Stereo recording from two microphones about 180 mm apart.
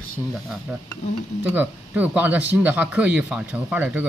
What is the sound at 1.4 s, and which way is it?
Speech, 10° right (ahead or behind).